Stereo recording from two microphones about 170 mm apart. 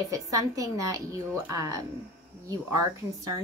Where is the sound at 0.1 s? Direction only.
20° right (ahead or behind).